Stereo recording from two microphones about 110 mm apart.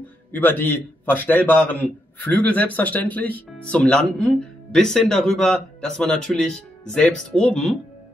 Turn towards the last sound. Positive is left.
turn(degrees=10)  # may be behind; listen again after turning